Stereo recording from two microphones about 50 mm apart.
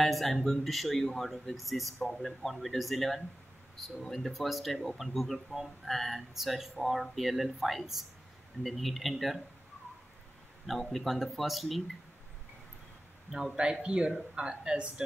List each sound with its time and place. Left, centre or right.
0.0 s speech: centre
10.8 s speech: centre
13.8 s a woman's voice: right